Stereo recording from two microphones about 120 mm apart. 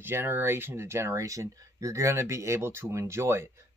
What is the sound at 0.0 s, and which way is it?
Speech, 20° right (ahead or behind).